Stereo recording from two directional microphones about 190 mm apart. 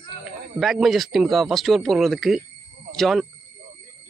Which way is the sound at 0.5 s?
Centre (ahead or behind).